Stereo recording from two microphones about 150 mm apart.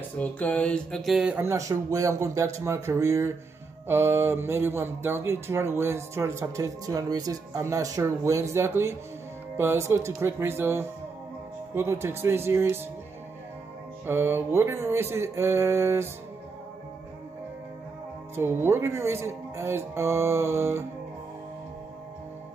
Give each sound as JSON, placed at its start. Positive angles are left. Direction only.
{"t": 0.2, "sound": "speech", "side_deg": 10}
{"t": 14.0, "sound": "speech", "side_deg": -15}
{"t": 18.3, "sound": "speech", "side_deg": -15}